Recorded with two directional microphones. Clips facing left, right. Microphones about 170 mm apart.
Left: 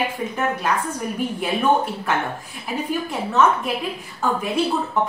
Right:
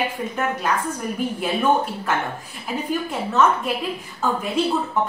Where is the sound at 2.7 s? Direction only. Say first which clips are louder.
Even; centre (ahead or behind).